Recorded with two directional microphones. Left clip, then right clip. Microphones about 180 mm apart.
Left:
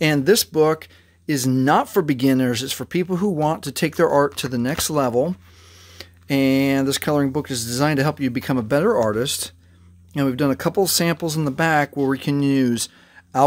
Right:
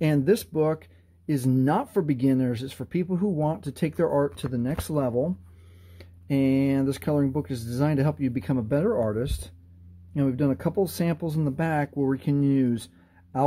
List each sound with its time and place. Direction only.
0.0 s speech: 15° left (ahead or behind)